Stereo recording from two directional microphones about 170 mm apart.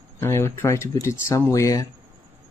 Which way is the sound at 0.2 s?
15° left (ahead or behind).